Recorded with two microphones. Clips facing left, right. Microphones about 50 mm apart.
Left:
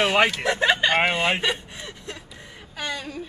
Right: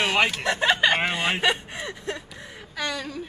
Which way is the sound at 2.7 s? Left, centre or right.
Right.